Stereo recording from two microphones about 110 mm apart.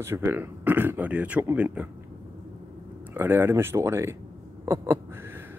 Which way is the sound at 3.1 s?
20° right (ahead or behind).